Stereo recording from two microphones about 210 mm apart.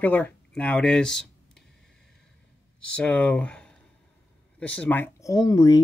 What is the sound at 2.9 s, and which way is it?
Speech, 5° left (ahead or behind).